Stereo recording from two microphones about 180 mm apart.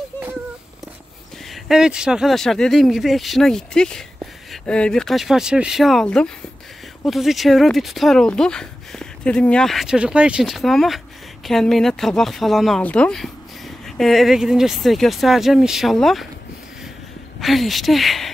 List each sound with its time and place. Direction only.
1.5 s speech: 5° right (ahead or behind)
17.4 s speech: centre (ahead or behind)